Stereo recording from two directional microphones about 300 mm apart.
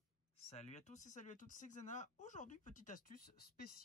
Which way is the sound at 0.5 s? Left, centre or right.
Left.